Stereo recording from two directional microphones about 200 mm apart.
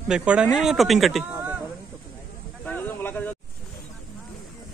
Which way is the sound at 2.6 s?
10° left (ahead or behind).